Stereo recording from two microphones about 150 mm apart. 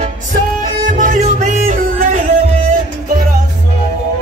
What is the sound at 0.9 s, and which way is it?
Music, 60° right (ahead or behind).